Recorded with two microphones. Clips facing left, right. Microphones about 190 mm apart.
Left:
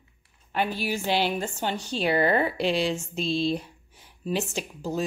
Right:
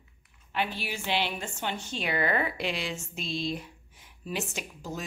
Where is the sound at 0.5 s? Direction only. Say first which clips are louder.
Left 5 dB; 40° left (ahead or behind).